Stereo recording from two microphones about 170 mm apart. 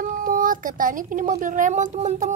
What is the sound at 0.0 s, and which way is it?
Speech, 50° right (ahead or behind).